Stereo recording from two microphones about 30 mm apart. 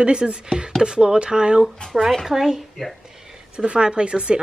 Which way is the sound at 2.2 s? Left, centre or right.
Centre.